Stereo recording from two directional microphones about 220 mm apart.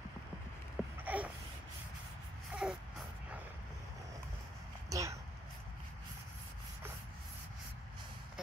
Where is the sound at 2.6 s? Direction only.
Centre (ahead or behind).